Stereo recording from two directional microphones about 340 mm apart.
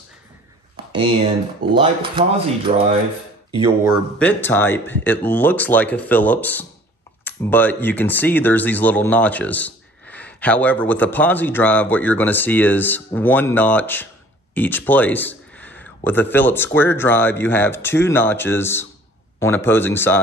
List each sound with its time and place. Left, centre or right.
2.1 s speech: centre
4.2 s a man's voice: centre